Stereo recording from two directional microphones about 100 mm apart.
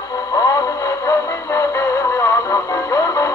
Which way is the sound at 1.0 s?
30° left (ahead or behind).